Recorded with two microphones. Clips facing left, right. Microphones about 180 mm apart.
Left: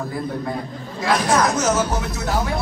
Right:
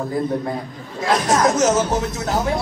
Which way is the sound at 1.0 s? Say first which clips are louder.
Right 1 dB; 25° right (ahead or behind).